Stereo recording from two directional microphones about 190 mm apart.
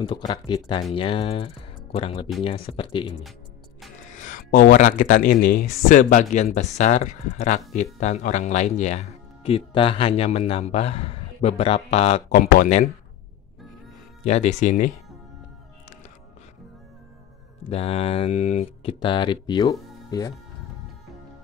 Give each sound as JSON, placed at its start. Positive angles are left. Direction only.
{"t": 0.3, "sound": "speech", "side_deg": 25}
{"t": 4.1, "sound": "speech", "side_deg": 40}
{"t": 12.4, "sound": "speech", "side_deg": 45}
{"t": 14.2, "sound": "speech", "side_deg": 35}
{"t": 17.6, "sound": "speech", "side_deg": 30}
{"t": 18.9, "sound": "speech", "side_deg": 25}